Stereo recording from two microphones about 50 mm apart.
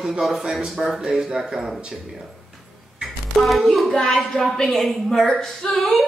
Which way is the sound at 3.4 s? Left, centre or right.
Centre.